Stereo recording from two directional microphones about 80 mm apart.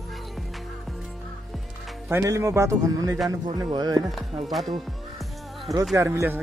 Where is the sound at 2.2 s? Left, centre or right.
Right.